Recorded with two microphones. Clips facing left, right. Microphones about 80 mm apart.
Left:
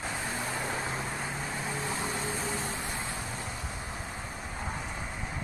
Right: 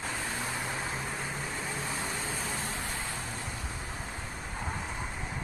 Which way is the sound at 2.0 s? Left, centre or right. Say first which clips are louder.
Left 2 dB; left.